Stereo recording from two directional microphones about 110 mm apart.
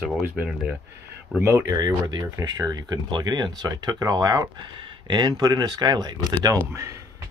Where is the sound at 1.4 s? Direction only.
25° right (ahead or behind).